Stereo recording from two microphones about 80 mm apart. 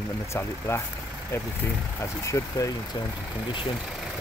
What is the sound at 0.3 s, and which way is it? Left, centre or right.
Speech, left.